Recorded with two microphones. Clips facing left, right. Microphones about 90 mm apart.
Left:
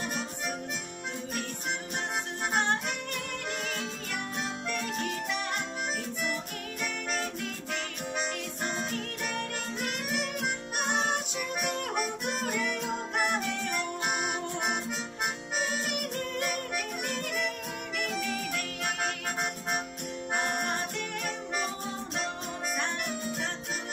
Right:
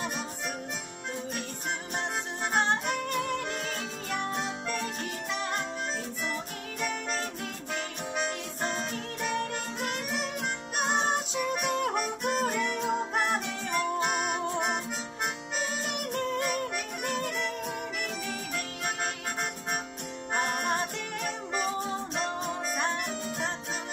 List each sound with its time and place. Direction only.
2.5 s music: 30° right (ahead or behind)
6.8 s music: 30° right (ahead or behind)
9.4 s music: 30° right (ahead or behind)
14.0 s music: 5° left (ahead or behind)
15.9 s music: 30° right (ahead or behind)